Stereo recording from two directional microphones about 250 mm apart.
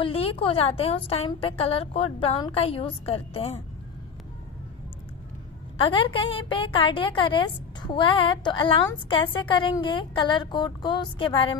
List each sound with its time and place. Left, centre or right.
0.0 s a woman's voice: left
5.8 s a woman's voice: left